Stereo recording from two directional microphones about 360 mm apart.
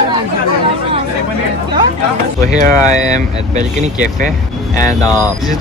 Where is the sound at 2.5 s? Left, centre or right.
Centre.